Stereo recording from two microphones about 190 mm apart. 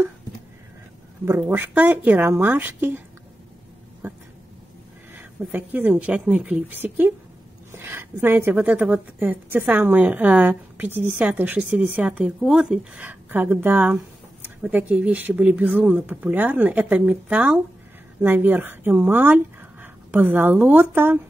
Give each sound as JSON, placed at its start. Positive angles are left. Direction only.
{"t": 1.2, "sound": "a woman's voice", "side_deg": -10}
{"t": 4.0, "sound": "a sound", "side_deg": -10}
{"t": 5.1, "sound": "a woman's voice", "side_deg": -10}